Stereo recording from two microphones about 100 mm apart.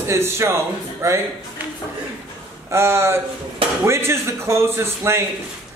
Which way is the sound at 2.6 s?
25° right (ahead or behind).